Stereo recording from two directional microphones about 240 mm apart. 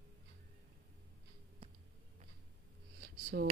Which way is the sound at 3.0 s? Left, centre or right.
Right.